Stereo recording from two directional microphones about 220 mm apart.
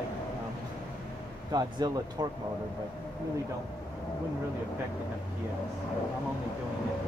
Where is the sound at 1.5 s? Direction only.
20° right (ahead or behind).